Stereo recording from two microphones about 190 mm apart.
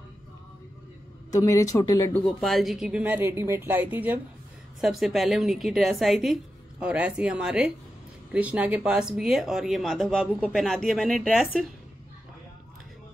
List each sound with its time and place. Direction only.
1.4 s speech: 15° left (ahead or behind)
2.2 s speech: centre (ahead or behind)